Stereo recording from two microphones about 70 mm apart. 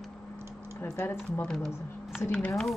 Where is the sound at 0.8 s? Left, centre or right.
Left.